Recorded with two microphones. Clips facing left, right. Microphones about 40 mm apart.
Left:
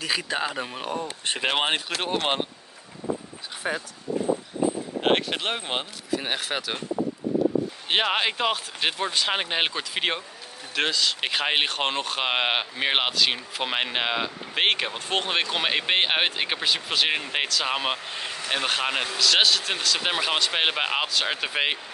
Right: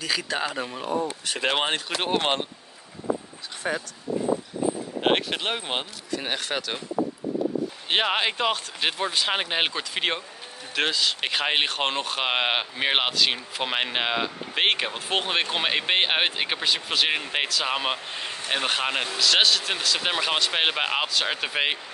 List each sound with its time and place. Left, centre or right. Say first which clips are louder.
0.0 s speech: even; centre
1.4 s speech: even; centre
1.9 s speech: right 2 dB; centre
3.6 s speech: right 1 dB; centre
5.0 s speech: even; centre
7.9 s speech: even; centre